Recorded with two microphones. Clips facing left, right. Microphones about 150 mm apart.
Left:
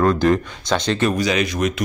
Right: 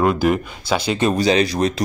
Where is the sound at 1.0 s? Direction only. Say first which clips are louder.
Right 3 dB; 30° right (ahead or behind).